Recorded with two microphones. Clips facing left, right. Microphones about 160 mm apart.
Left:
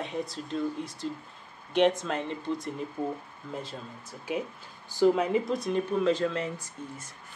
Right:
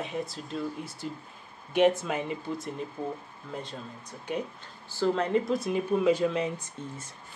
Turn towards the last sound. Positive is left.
turn(degrees=-20)  # may be behind; listen again after turning